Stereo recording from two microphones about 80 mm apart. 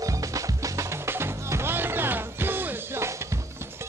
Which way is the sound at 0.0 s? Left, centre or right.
Right.